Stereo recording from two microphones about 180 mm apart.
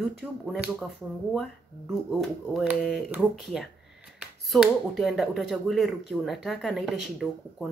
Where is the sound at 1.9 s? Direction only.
Centre (ahead or behind).